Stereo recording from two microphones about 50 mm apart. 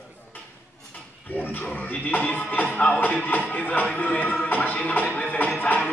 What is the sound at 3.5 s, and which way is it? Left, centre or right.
Music, left.